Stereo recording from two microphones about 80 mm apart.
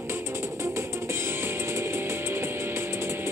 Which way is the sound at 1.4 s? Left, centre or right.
Right.